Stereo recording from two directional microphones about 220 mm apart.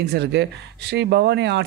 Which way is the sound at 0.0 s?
50° right (ahead or behind).